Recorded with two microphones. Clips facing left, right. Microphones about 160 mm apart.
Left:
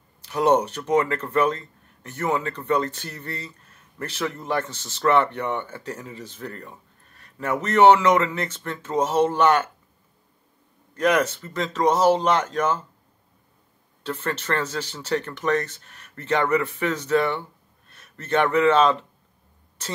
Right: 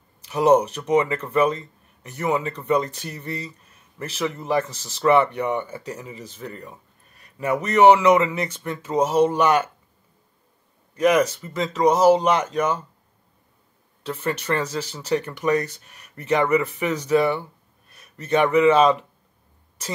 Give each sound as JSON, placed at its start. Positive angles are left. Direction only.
{"t": 0.2, "sound": "speech", "side_deg": -5}
{"t": 11.0, "sound": "speech", "side_deg": -5}
{"t": 14.0, "sound": "speech", "side_deg": -5}